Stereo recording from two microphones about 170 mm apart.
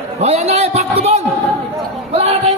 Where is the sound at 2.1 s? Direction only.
40° right (ahead or behind).